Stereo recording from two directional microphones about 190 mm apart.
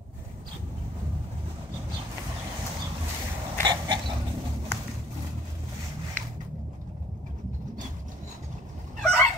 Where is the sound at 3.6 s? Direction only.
25° right (ahead or behind).